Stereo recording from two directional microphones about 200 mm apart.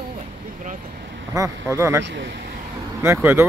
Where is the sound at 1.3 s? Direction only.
15° right (ahead or behind).